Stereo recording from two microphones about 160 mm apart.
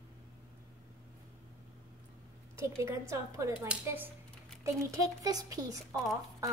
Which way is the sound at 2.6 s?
20° right (ahead or behind).